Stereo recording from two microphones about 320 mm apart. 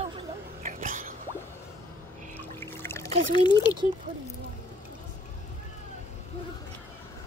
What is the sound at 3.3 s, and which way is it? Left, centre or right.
Speech, centre.